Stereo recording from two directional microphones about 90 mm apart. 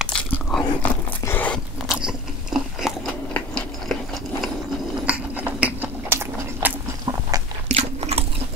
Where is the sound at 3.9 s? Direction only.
Centre (ahead or behind).